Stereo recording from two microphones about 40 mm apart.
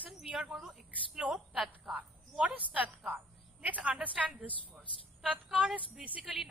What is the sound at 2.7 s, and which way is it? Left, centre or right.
A woman's voice, right.